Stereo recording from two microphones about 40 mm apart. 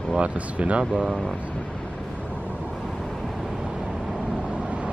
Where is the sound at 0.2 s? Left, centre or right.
Right.